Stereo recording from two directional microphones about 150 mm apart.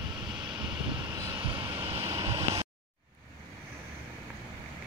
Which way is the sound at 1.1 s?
20° right (ahead or behind).